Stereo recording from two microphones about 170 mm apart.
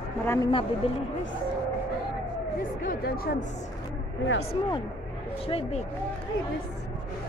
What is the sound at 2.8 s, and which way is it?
Speech, 60° left (ahead or behind).